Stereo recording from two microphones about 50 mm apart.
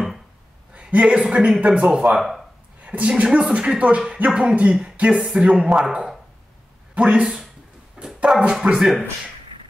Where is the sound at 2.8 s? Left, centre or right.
Right.